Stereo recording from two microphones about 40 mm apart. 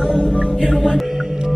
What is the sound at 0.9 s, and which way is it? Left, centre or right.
Music, centre.